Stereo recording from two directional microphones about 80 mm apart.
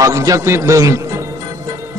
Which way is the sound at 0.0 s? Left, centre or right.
Right.